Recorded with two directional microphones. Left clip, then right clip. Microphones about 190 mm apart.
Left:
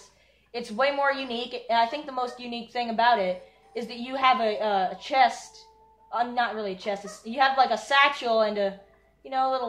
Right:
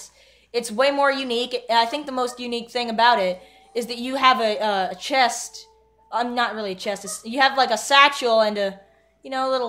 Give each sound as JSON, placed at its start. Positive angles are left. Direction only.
{"t": 0.5, "sound": "a woman's voice", "side_deg": -65}